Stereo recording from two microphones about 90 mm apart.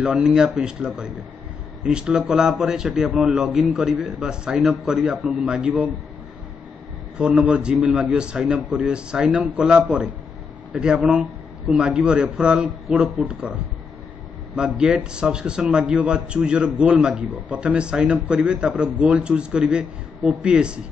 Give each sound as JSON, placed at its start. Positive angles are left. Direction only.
{"t": 0.0, "sound": "a man's voice", "side_deg": -10}
{"t": 5.7, "sound": "a man's voice", "side_deg": -15}
{"t": 7.2, "sound": "a man's voice", "side_deg": -10}